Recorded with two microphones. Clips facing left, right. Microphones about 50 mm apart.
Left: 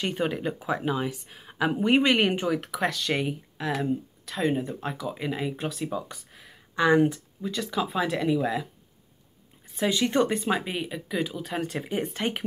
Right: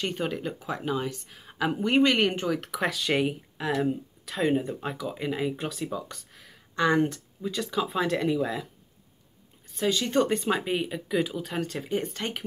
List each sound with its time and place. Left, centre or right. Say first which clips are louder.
0.0 s speech: left 2 dB; centre
9.8 s speech: left 1 dB; centre
10.2 s speech: even; centre